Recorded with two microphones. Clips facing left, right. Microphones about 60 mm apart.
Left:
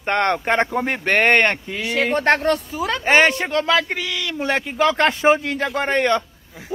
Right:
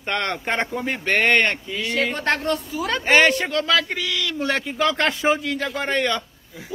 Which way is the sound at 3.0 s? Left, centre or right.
Left.